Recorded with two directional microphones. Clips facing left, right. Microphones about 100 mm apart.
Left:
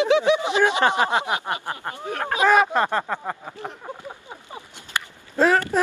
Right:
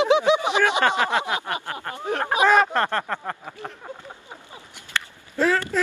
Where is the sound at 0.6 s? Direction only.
20° left (ahead or behind).